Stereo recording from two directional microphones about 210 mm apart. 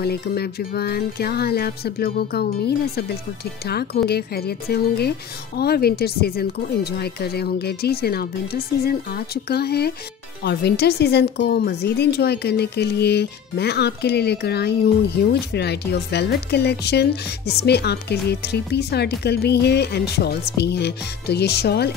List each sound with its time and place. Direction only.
0.0 s a woman's voice: 50° left (ahead or behind)